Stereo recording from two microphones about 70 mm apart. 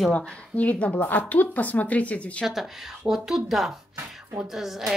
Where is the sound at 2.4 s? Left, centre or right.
Centre.